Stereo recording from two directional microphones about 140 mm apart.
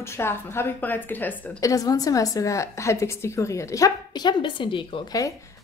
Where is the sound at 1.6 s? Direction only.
25° left (ahead or behind).